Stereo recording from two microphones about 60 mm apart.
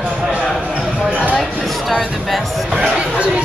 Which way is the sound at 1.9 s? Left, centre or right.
Centre.